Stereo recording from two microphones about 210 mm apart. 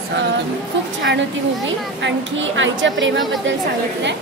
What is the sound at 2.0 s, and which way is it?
A man's voice, 65° right (ahead or behind).